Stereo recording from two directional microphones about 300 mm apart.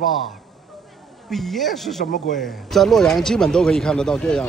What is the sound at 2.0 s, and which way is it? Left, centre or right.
Speech, left.